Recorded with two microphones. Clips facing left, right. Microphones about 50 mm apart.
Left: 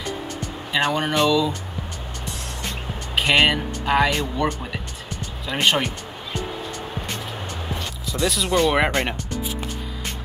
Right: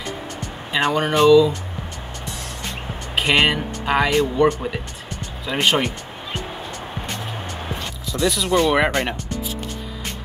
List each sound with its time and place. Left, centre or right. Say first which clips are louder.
0.7 s speech: right 3 dB; centre
3.2 s speech: even; centre
4.1 s speech: right 6 dB; right
5.5 s speech: right 1 dB; centre
8.0 s speech: right 2 dB; centre